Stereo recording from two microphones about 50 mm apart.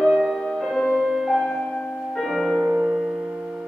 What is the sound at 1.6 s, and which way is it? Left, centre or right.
Music, left.